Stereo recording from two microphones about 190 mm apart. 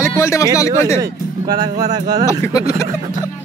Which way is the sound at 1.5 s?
20° right (ahead or behind).